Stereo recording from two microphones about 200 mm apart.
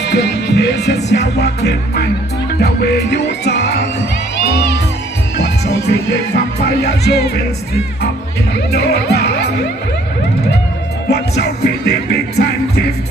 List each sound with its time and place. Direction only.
0.0 s music: 60° left (ahead or behind)
8.7 s music: 55° left (ahead or behind)
11.1 s music: 55° left (ahead or behind)